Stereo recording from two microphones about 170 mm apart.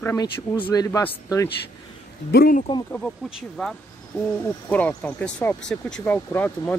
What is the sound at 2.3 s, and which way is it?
Speech, 65° left (ahead or behind).